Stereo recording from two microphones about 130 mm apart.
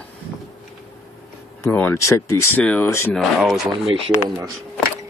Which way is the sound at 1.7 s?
20° left (ahead or behind).